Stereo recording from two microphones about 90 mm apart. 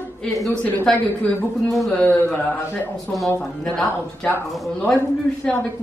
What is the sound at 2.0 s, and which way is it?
Speech, 20° left (ahead or behind).